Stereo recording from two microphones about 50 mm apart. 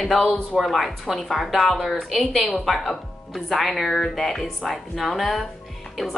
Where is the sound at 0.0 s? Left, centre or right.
Centre.